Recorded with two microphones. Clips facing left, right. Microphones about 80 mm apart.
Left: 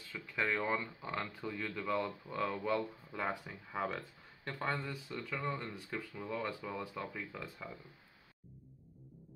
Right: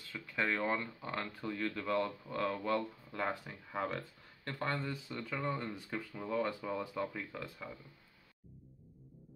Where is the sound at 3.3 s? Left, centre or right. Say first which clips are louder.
Even; centre.